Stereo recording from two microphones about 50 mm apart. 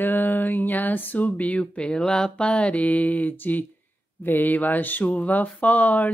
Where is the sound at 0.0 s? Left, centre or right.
Left.